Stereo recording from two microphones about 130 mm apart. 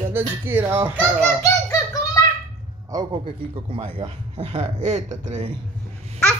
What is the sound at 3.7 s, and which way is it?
Speech, 45° right (ahead or behind).